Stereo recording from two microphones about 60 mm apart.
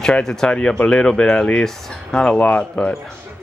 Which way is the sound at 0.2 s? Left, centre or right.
Centre.